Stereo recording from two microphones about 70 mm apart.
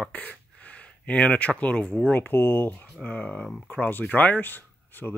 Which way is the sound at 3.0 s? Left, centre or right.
Centre.